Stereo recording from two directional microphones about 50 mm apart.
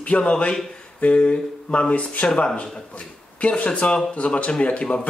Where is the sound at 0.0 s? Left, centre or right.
Left.